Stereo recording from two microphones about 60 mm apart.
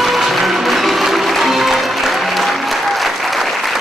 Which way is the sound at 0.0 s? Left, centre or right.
Centre.